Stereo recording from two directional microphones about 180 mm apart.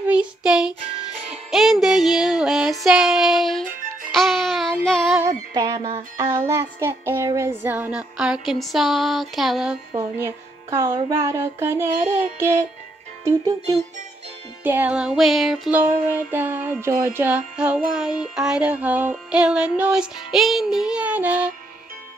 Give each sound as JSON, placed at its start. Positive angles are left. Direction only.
{"t": 0.0, "sound": "music", "side_deg": -5}
{"t": 2.8, "sound": "child singing", "side_deg": 0}
{"t": 5.5, "sound": "music", "side_deg": -20}
{"t": 9.9, "sound": "music", "side_deg": -15}
{"t": 13.2, "sound": "speech", "side_deg": -20}
{"t": 14.6, "sound": "music", "side_deg": -10}